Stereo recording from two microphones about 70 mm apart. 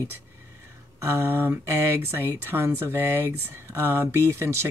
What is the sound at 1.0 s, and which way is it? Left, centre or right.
Speech, right.